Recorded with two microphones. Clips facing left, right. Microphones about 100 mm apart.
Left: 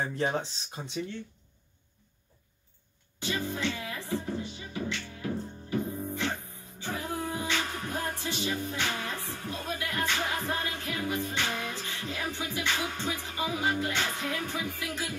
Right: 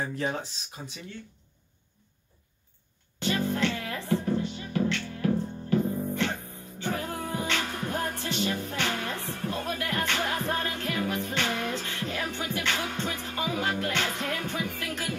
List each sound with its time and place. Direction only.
0.0 s speech: 25° left (ahead or behind)
3.2 s music: 65° right (ahead or behind)